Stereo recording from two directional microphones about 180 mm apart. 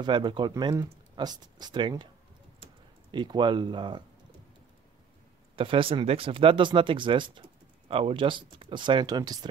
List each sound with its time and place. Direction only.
0.0 s speech: 25° right (ahead or behind)
3.1 s speech: 25° right (ahead or behind)
5.6 s speech: 30° right (ahead or behind)